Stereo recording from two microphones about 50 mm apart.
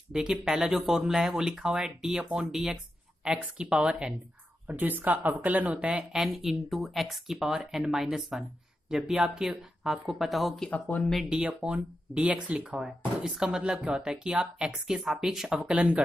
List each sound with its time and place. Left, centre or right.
0.1 s speech: centre
3.2 s speech: centre
3.6 s speech: right
4.6 s speech: right
6.1 s speech: centre
10.7 s speech: left
11.2 s speech: centre
12.5 s speech: centre
15.0 s speech: centre